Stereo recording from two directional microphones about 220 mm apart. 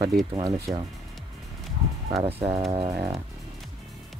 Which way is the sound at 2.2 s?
25° right (ahead or behind).